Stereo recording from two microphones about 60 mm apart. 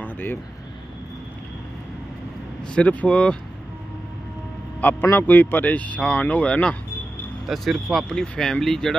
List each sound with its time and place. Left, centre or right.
0.0 s a sound: left
2.7 s speech: left
5.1 s speech: left
7.4 s speech: centre